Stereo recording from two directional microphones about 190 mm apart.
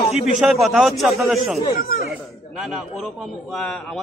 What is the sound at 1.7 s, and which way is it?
Speech, 50° left (ahead or behind).